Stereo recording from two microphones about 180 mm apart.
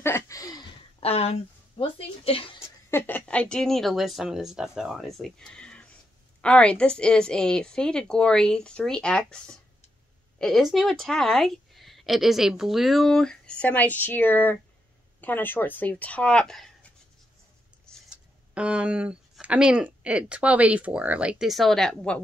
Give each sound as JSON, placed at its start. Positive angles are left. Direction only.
{"t": 0.0, "sound": "a sound", "side_deg": 15}
{"t": 1.0, "sound": "speech", "side_deg": 35}
{"t": 2.9, "sound": "a woman's voice", "side_deg": 10}
{"t": 17.8, "sound": "speech", "side_deg": -5}